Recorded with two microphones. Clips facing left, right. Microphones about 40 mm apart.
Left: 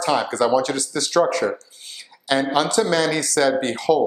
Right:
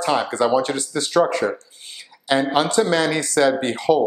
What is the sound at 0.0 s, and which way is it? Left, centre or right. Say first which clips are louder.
Speech: even; centre.